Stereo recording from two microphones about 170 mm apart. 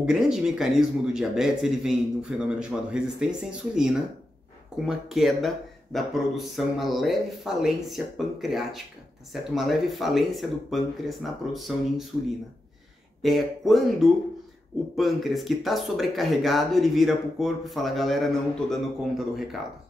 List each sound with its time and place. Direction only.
0.0 s speech: 5° right (ahead or behind)
13.2 s speech: centre (ahead or behind)